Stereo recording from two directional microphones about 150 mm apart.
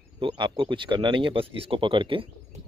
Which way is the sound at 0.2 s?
35° right (ahead or behind).